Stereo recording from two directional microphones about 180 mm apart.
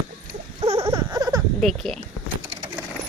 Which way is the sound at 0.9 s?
25° right (ahead or behind).